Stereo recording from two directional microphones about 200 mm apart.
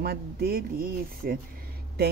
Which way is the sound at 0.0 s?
50° right (ahead or behind).